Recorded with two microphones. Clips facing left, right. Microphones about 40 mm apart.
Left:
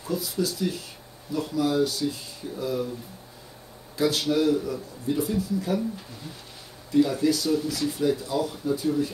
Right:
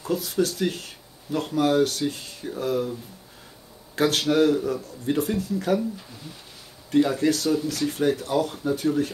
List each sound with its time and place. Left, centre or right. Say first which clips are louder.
0.0 s speech: right 3 dB; right
3.9 s speech: right 2 dB; right
6.9 s speech: right 1 dB; right